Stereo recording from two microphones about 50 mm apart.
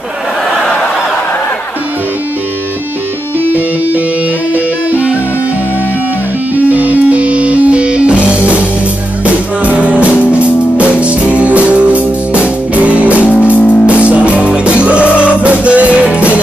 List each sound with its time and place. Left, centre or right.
4.6 s music: right
6.5 s music: right
13.2 s music: left
14.0 s music: right